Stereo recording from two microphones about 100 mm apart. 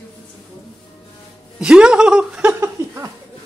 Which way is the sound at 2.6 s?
30° right (ahead or behind).